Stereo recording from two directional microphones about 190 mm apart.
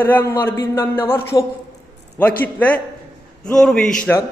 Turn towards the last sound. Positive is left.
turn(degrees=5)  # may be behind; listen again after turning